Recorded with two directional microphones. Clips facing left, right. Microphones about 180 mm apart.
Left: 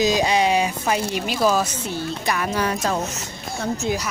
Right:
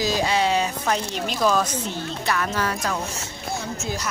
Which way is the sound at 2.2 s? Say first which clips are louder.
Left 1 dB; 15° left (ahead or behind).